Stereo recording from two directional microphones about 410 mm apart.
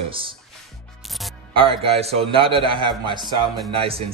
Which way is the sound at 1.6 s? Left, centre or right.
Centre.